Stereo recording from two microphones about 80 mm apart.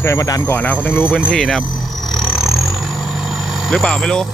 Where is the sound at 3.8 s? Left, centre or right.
Centre.